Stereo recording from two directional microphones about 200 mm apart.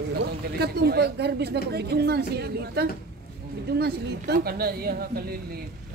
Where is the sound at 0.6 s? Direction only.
55° right (ahead or behind).